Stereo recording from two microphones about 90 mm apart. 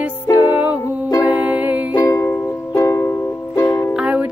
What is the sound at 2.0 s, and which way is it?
Music, 35° left (ahead or behind).